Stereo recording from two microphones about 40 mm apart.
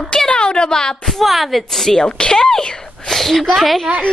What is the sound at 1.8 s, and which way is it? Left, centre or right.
Speech, centre.